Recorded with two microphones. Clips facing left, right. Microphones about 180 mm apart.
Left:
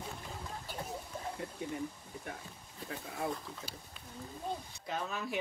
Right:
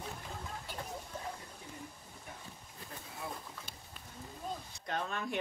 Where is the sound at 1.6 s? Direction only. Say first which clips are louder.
Left 11 dB; 75° left (ahead or behind).